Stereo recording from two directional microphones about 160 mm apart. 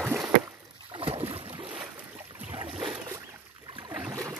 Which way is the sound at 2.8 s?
25° right (ahead or behind).